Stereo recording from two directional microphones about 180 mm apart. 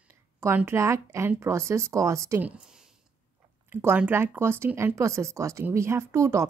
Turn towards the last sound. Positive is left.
turn(degrees=-15)  # may be behind; listen again after turning